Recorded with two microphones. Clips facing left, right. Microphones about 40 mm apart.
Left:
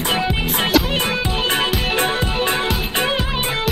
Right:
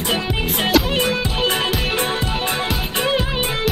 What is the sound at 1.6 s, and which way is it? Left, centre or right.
Music, centre.